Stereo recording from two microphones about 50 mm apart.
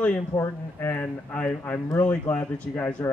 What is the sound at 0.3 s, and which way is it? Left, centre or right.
Speech, left.